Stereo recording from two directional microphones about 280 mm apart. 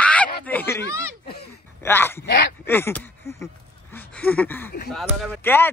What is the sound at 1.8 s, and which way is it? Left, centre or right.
Speech, centre.